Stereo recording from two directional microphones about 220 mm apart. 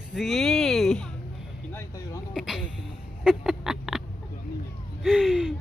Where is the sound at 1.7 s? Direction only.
10° left (ahead or behind).